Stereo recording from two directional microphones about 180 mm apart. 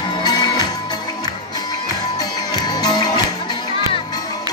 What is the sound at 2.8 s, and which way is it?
Music, 20° left (ahead or behind).